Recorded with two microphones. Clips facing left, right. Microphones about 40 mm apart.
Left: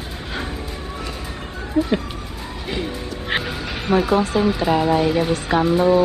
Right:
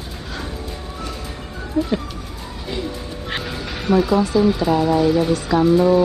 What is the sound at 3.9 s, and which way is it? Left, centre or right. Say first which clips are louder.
Speech: right 1 dB; left.